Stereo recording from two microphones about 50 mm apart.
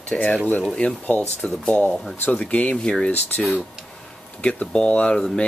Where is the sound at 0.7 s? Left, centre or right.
Left.